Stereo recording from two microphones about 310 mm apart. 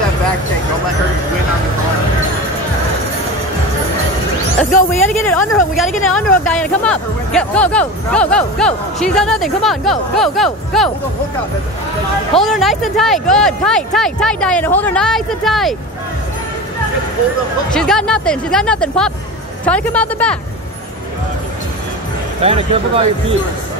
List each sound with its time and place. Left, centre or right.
5.1 s speech: centre
12.4 s speech: centre
17.7 s speech: centre
22.4 s speech: centre